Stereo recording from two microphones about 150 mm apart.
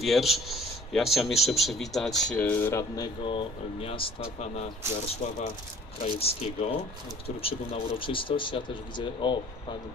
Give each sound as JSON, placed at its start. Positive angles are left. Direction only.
{"t": 0.0, "sound": "speech", "side_deg": 0}
{"t": 6.0, "sound": "speech", "side_deg": 40}